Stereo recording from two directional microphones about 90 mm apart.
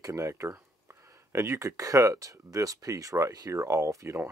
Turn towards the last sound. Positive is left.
turn(degrees=-35)  # may be behind; listen again after turning